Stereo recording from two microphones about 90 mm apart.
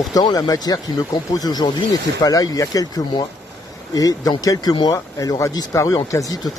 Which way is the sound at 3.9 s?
45° left (ahead or behind).